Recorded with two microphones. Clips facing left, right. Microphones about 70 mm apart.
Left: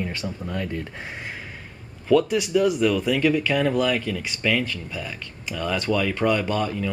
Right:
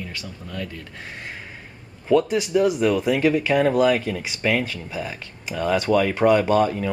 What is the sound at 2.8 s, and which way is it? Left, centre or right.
Speech, centre.